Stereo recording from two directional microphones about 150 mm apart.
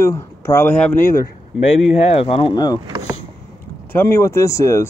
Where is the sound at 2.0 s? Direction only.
40° left (ahead or behind).